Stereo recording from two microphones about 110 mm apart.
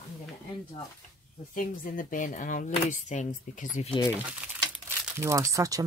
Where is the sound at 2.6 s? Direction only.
90° left.